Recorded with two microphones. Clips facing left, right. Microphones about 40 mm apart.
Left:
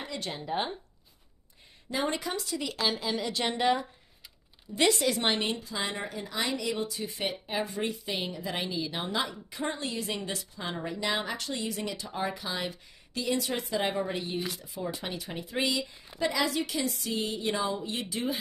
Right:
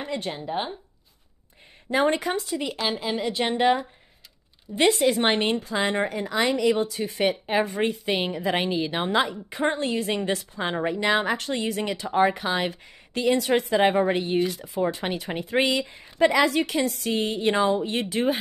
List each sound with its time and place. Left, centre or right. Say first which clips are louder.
0.3 s a woman's voice: right 3 dB; centre
1.9 s a woman's voice: right 8 dB; right